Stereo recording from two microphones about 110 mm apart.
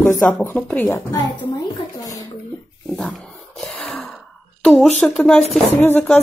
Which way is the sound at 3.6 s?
Centre (ahead or behind).